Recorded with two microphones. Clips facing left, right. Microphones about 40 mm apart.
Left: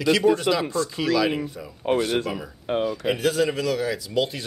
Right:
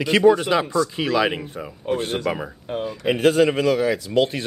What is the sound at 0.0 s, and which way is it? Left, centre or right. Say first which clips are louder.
Speech: right 3 dB; right.